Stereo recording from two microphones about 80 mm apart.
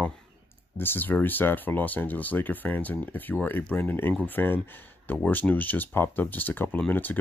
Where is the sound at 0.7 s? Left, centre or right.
Left.